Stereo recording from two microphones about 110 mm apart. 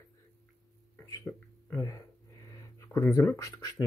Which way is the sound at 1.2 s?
20° left (ahead or behind).